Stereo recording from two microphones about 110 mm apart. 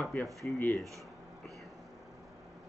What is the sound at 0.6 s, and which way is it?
Speech, 15° left (ahead or behind).